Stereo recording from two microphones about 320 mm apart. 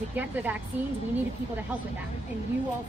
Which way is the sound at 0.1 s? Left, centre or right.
Centre.